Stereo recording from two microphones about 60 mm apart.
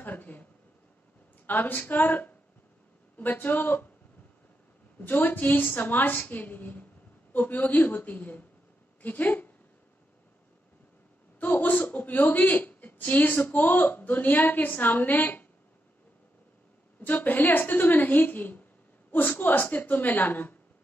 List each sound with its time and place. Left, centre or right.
0.0 s a sound: left
1.4 s a woman's voice: left
5.0 s a woman's voice: left
11.3 s a woman's voice: left
17.0 s a woman's voice: left